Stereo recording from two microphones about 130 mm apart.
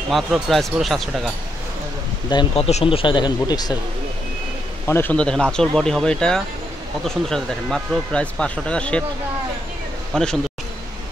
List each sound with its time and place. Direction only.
0.1 s speech: centre (ahead or behind)
2.5 s speech: 50° left (ahead or behind); by 3.7 s 30° left (ahead or behind)
4.8 s speech: 15° left (ahead or behind)
10.1 s speech: 5° left (ahead or behind)